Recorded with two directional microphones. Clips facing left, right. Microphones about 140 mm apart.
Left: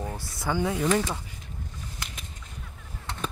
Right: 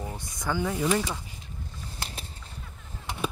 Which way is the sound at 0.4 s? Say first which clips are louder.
Left 2 dB; 10° left (ahead or behind).